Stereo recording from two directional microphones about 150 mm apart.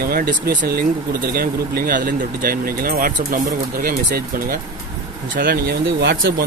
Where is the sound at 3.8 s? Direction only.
80° right.